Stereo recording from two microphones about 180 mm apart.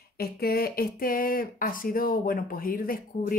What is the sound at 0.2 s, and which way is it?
Speech, 60° left (ahead or behind).